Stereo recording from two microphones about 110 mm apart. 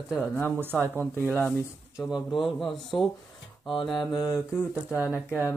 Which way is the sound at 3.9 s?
40° left (ahead or behind).